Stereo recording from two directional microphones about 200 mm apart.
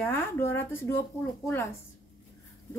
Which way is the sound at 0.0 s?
10° left (ahead or behind).